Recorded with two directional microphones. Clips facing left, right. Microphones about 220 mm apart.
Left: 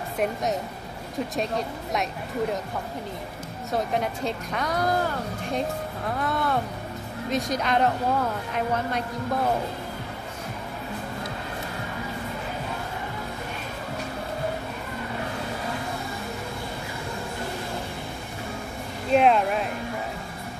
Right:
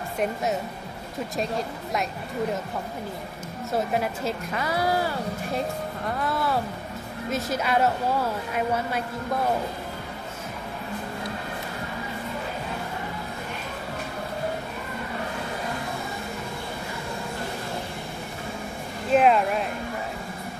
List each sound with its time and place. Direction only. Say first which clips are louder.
1.3 s a woman's voice: right 2 dB; centre (ahead or behind)
3.7 s a woman's voice: even; 5° right (ahead or behind)
19.1 s a woman's voice: even; centre (ahead or behind)